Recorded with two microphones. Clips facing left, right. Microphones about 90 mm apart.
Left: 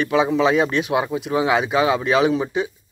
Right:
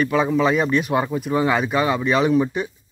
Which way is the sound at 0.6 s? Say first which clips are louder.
Right 1 dB; 10° left (ahead or behind).